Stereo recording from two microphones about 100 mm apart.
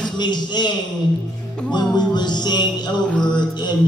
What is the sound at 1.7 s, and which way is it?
Music, 45° left (ahead or behind).